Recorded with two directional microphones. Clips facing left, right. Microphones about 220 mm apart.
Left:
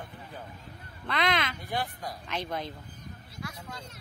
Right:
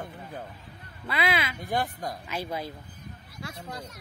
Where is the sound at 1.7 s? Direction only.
45° right (ahead or behind).